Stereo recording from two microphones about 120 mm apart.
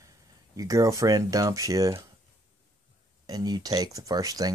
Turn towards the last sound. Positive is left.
turn(degrees=-30)  # may be behind; listen again after turning